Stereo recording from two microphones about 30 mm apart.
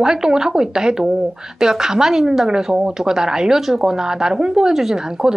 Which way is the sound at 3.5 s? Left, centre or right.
Centre.